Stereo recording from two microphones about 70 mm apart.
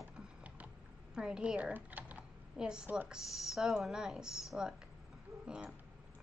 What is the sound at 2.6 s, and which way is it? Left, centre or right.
Speech, centre.